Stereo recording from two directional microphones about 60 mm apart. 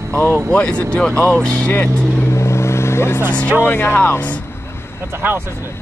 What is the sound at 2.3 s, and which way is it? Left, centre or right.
Vehicle, left.